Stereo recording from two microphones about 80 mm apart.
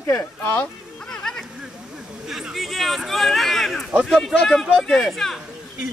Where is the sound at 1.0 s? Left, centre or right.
Centre.